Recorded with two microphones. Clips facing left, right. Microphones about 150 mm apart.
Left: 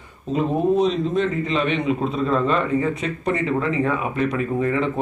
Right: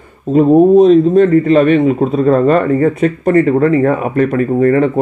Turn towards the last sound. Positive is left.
turn(degrees=-55)  # may be behind; listen again after turning